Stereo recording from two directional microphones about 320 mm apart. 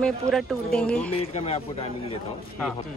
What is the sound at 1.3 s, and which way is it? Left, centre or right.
Speech, centre.